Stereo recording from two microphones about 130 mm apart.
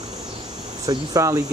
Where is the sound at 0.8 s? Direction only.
30° right (ahead or behind).